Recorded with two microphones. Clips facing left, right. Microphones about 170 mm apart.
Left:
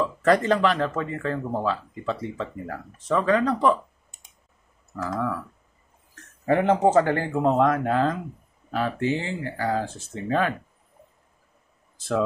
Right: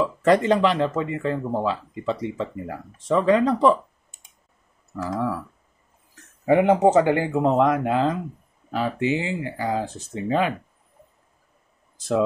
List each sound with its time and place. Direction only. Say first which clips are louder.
0.2 s speech: right 2 dB; 20° right (ahead or behind)
5.0 s speech: right 2 dB; 25° right (ahead or behind)
6.4 s speech: right 3 dB; 15° right (ahead or behind)